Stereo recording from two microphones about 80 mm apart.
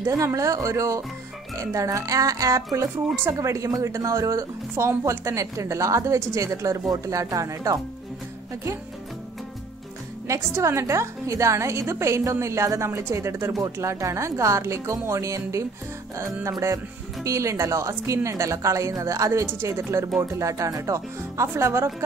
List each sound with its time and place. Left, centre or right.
0.0 s speech: right
10.2 s speech: right